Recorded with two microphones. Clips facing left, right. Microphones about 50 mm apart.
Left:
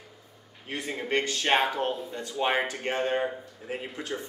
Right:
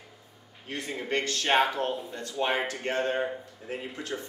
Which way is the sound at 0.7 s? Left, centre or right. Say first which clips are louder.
Left 1 dB; centre.